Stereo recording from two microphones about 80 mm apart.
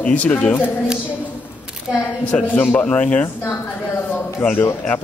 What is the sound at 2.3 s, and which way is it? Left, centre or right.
Speech, centre.